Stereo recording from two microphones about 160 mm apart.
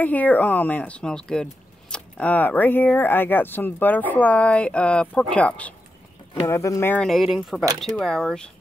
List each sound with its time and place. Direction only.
0.0 s speech: 10° left (ahead or behind)
6.4 s speech: 20° left (ahead or behind)
7.1 s speech: centre (ahead or behind)